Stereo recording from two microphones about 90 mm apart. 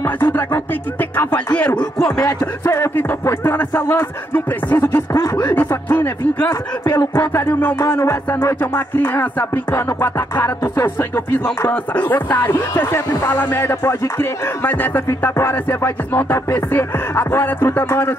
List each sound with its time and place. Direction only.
0.0 s music: 25° left (ahead or behind)
0.9 s speech: 20° left (ahead or behind)
2.0 s music: 5° left (ahead or behind)
2.2 s speech: 35° left (ahead or behind)
5.1 s speech: 40° left (ahead or behind)
5.5 s speech: 20° left (ahead or behind)
6.5 s speech: 45° left (ahead or behind)
7.3 s speech: 25° left (ahead or behind)
7.8 s speech: 35° left (ahead or behind)
8.3 s speech: 25° left (ahead or behind)